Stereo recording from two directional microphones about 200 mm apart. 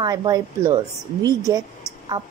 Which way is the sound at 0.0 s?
20° right (ahead or behind).